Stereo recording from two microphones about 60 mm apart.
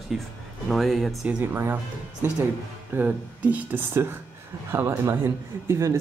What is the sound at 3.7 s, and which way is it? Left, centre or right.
Speech, right.